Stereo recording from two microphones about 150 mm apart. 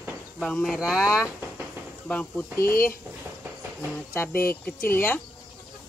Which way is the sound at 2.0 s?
10° left (ahead or behind).